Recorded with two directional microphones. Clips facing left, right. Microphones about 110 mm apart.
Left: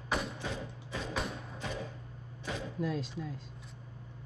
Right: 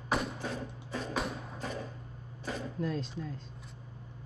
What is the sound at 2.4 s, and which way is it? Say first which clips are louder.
Speech: right 1 dB; centre (ahead or behind).